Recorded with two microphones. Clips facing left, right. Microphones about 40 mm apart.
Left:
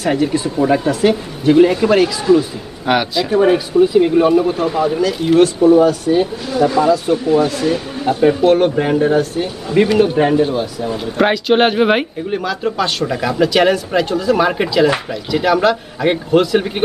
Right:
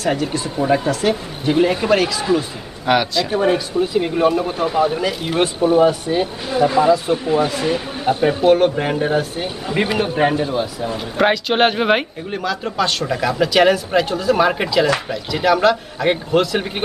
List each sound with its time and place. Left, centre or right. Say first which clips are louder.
0.0 s speech: left 4 dB; centre
0.6 s speech: left 3 dB; centre
2.9 s speech: left 2 dB; centre
8.5 s speech: left 2 dB; centre